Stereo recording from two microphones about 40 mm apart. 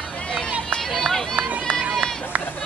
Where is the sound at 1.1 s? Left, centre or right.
Centre.